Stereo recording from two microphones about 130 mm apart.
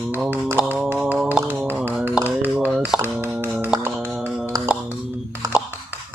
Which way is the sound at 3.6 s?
15° right (ahead or behind).